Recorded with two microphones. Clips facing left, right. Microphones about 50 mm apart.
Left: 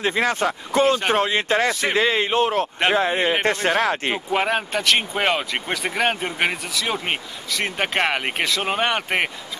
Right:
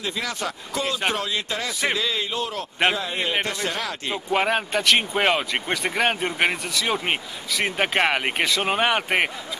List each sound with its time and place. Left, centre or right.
0.0 s speech: left
4.3 s speech: centre